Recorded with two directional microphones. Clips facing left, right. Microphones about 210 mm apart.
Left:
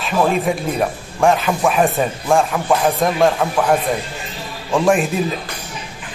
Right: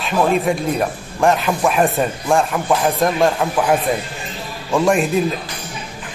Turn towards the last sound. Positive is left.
turn(degrees=0)  # may be behind; listen again after turning